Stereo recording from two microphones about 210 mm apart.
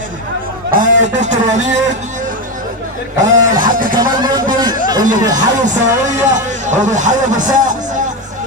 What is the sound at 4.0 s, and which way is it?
Music, 20° right (ahead or behind).